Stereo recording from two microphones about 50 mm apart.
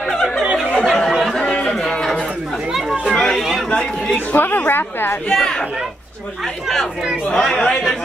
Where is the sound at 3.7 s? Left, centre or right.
Centre.